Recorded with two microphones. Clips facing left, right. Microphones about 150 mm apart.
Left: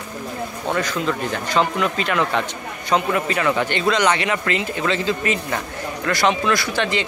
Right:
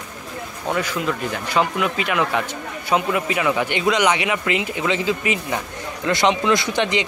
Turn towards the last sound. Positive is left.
turn(degrees=-20)  # may be behind; listen again after turning